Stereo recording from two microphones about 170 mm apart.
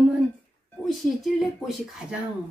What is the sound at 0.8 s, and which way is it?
Speech, centre (ahead or behind).